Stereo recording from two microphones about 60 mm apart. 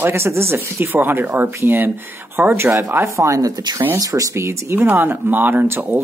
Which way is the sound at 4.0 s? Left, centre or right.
Right.